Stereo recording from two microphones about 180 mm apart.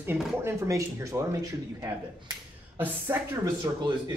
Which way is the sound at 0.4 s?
15° right (ahead or behind).